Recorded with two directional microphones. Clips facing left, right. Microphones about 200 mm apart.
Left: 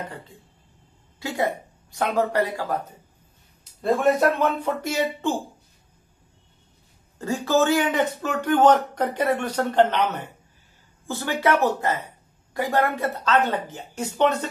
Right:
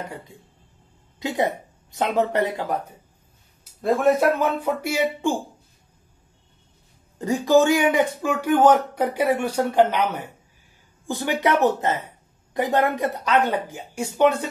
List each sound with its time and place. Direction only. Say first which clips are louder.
1.2 s speech: right 2 dB; 20° right (ahead or behind)
3.8 s speech: right 1 dB; centre (ahead or behind)
7.2 s speech: right 4 dB; 15° right (ahead or behind)